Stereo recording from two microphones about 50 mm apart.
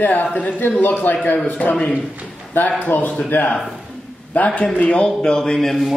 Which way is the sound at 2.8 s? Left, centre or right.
Left.